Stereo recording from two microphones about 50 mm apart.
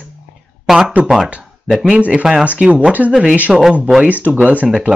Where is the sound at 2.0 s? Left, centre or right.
Right.